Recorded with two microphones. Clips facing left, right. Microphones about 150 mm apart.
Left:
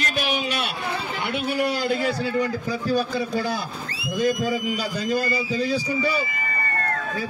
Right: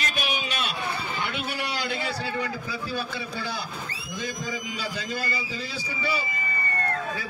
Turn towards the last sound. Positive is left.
turn(degrees=45)  # may be behind; listen again after turning